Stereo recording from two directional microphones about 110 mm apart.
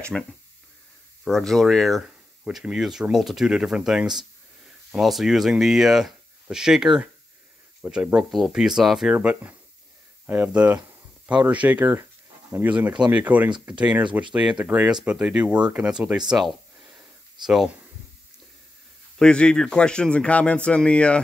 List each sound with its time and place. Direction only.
0.1 s speech: 5° left (ahead or behind)
19.1 s a man's voice: 10° left (ahead or behind)